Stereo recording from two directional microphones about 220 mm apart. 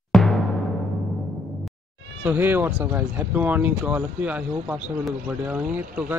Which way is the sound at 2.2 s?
10° right (ahead or behind).